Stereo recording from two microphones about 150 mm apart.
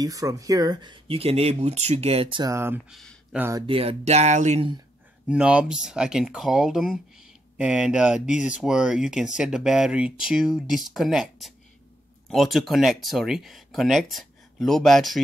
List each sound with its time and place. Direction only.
0.0 s speech: 25° right (ahead or behind); by 2.4 s 40° right (ahead or behind)
2.4 s speech: 15° right (ahead or behind)
2.9 s speech: 5° left (ahead or behind)
3.3 s speech: 15° right (ahead or behind)
3.6 s speech: 40° right (ahead or behind)
5.3 s speech: 5° right (ahead or behind)